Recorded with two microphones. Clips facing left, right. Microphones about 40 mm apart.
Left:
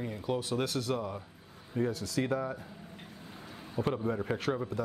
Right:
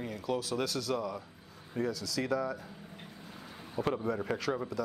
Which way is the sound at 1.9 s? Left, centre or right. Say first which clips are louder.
Left 2 dB; right.